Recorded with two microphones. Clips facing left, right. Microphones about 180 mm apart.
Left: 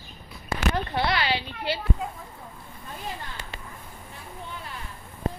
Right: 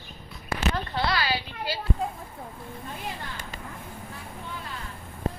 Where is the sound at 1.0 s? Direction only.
25° left (ahead or behind).